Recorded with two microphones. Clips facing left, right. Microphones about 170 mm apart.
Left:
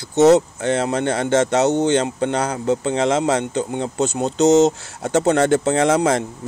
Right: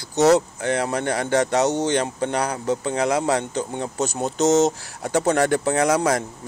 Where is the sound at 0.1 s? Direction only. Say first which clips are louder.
Left 4 dB; 20° left (ahead or behind).